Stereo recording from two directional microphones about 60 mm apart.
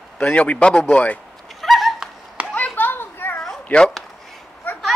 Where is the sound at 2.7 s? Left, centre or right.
Left.